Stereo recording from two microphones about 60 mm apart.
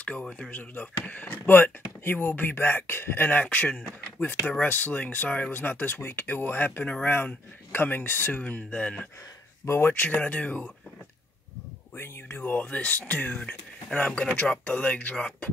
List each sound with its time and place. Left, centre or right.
0.0 s speech: centre
0.5 s speech: left
6.8 s speech: left
7.7 s speech: left; by 9.0 s centre
9.7 s speech: left
10.1 s speech: left
11.9 s speech: left; by 15.5 s centre